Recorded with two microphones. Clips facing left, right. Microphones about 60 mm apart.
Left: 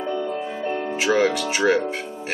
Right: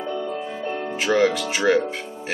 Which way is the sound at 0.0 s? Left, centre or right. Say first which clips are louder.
Left 2 dB; centre.